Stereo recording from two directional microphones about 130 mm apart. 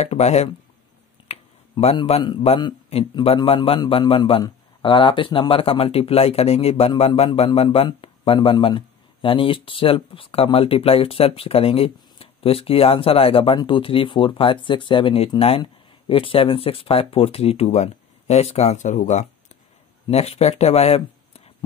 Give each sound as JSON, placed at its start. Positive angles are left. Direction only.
{"t": 0.0, "sound": "speech", "side_deg": 55}
{"t": 1.3, "sound": "a sound", "side_deg": 55}
{"t": 3.2, "sound": "speech", "side_deg": 35}
{"t": 20.1, "sound": "speech", "side_deg": 55}